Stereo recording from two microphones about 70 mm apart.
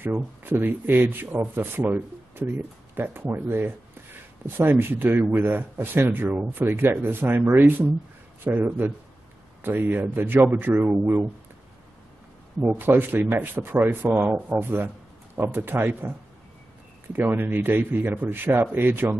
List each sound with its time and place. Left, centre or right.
0.0 s speech: right
6.6 s speech: right
12.6 s speech: right
17.1 s speech: right